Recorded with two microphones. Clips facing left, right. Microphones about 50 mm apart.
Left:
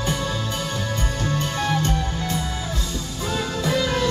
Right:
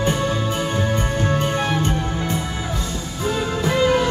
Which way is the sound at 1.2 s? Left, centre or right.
Centre.